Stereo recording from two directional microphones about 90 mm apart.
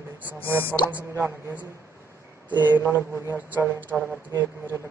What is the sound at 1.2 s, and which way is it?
Speech, 20° right (ahead or behind).